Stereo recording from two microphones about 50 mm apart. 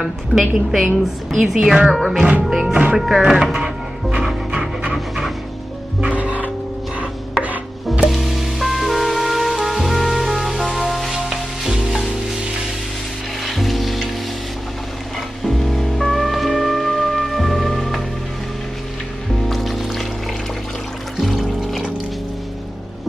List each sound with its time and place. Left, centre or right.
0.0 s a woman's voice: centre
2.7 s speech: right
3.0 s speech: centre
4.5 s music: centre
4.9 s music: centre
5.9 s music: right
7.0 s chopping: right
8.1 s music: centre
13.5 s music: centre
15.4 s music: centre
19.4 s music: centre
21.2 s music: centre